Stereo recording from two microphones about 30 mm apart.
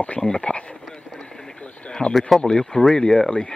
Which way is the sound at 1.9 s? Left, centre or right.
Left.